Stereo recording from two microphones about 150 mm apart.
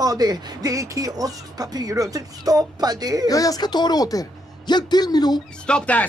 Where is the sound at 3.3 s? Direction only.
25° left (ahead or behind).